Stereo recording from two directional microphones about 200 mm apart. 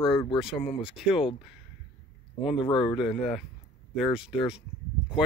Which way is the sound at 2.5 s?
25° left (ahead or behind).